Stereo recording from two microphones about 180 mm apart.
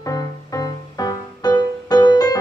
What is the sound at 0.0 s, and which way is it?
Music, 20° left (ahead or behind).